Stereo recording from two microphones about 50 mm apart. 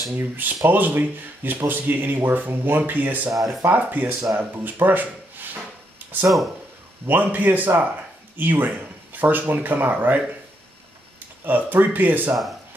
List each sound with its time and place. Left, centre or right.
0.1 s speech: right
4.7 s a sound: right
6.2 s speech: centre
7.1 s speech: right
11.4 s speech: right